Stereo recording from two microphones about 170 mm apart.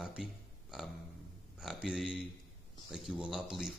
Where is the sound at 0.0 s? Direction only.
5° right (ahead or behind).